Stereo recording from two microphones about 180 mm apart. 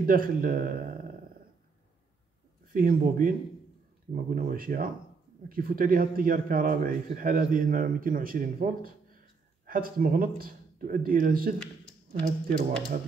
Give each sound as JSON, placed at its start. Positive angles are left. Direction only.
{"t": 0.0, "sound": "speech", "side_deg": -50}
{"t": 2.7, "sound": "speech", "side_deg": -50}